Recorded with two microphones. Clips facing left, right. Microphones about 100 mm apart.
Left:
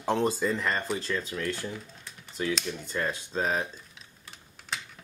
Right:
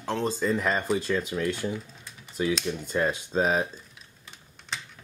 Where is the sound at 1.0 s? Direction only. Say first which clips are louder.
Right 5 dB; 15° right (ahead or behind).